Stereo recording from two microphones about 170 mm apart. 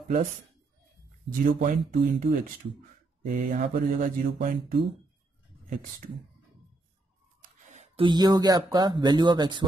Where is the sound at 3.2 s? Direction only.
50° right (ahead or behind).